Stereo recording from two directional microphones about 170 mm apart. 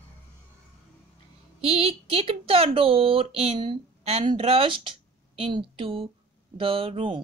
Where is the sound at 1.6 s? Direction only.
35° right (ahead or behind).